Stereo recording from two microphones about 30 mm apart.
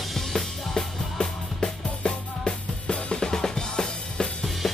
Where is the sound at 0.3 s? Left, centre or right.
Centre.